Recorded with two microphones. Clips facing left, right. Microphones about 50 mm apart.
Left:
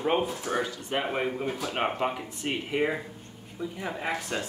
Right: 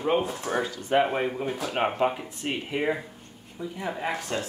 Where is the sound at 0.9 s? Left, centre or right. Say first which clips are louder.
Right 7 dB; centre.